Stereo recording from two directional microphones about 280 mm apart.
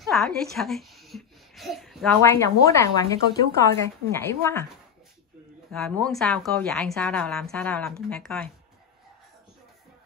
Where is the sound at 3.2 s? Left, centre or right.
Right.